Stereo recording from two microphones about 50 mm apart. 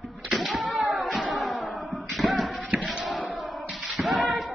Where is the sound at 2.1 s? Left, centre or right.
Centre.